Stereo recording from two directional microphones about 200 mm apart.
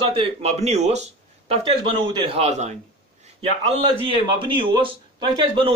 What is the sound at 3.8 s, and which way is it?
Speech, 25° right (ahead or behind).